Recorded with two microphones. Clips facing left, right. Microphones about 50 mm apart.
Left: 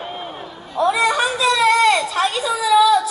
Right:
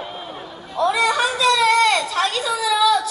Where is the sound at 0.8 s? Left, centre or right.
Centre.